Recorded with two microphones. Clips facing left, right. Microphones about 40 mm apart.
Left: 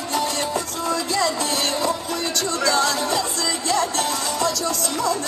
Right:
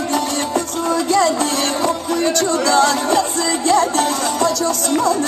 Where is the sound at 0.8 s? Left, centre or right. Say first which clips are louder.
Right 7 dB; right.